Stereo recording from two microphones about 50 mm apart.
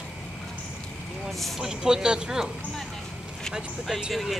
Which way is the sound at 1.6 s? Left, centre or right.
Centre.